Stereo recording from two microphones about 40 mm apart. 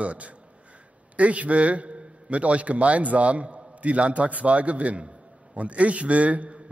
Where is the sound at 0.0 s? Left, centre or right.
Right.